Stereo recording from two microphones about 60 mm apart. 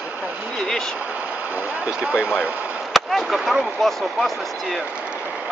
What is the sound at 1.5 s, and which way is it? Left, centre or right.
Speech, centre.